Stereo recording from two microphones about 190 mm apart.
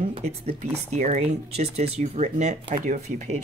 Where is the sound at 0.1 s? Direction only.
35° right (ahead or behind).